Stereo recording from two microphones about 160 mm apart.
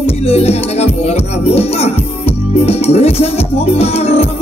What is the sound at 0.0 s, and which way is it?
Speech, 40° left (ahead or behind).